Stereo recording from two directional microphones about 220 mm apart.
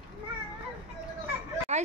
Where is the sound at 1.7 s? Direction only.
30° right (ahead or behind).